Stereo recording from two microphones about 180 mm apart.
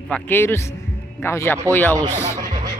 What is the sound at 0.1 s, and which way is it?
Speech, 10° left (ahead or behind).